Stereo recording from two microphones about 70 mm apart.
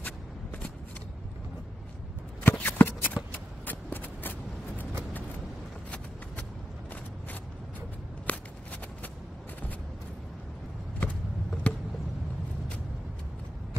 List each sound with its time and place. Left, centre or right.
2.5 s shuffling cards: left
3.3 s a sound: left
8.3 s shuffling cards: left
11.0 s vehicle: left